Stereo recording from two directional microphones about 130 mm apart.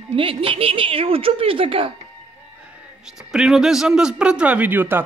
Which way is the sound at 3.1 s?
5° right (ahead or behind).